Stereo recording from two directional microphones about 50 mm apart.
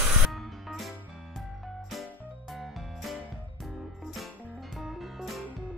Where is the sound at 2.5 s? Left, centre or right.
Centre.